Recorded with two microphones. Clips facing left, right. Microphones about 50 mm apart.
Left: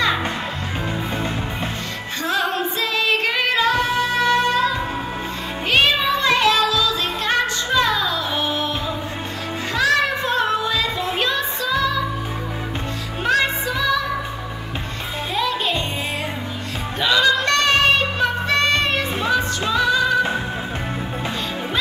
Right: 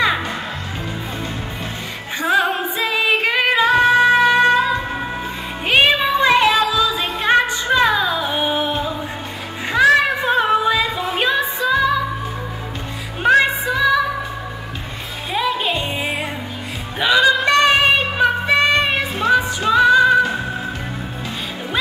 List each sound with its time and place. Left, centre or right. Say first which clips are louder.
2.2 s female singing: right 4 dB; centre
5.7 s music: right 3 dB; centre
9.7 s child singing: right 5 dB; centre
13.2 s music: right 5 dB; centre
15.3 s music: right 2 dB; centre
17.0 s music: right 3 dB; centre